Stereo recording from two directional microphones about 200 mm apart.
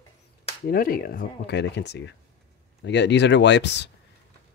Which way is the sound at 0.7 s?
45° left (ahead or behind).